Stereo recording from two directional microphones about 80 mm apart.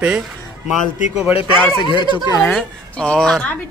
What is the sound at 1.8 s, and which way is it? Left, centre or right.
Speech, left.